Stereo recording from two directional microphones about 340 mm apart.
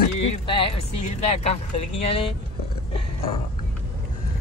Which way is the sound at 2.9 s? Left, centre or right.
Centre.